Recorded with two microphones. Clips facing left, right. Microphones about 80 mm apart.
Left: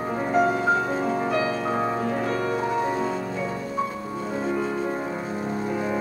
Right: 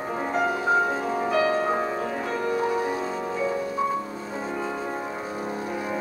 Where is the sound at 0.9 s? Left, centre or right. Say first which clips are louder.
Even; centre.